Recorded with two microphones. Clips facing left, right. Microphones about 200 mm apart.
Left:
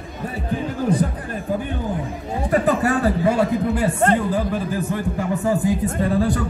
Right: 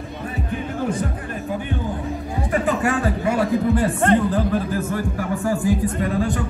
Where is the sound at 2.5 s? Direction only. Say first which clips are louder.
Left 2 dB; 40° left (ahead or behind).